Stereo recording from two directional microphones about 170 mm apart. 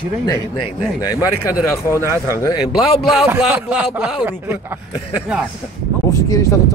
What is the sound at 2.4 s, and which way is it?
Speech, 20° left (ahead or behind).